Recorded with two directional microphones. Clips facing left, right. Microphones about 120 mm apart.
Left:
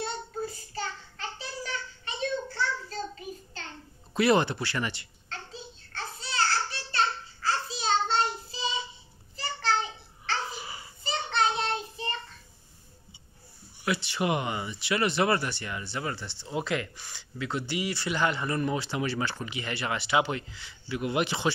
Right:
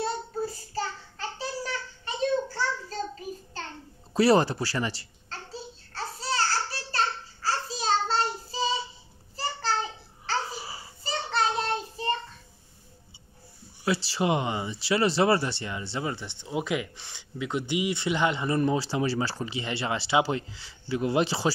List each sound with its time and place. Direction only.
0.7 s child singing: 35° right (ahead or behind)
4.1 s a sound: 35° right (ahead or behind)
13.8 s speech: 30° right (ahead or behind); by 16.9 s 15° right (ahead or behind)
16.9 s speech: 25° right (ahead or behind)
18.6 s speech: 30° right (ahead or behind)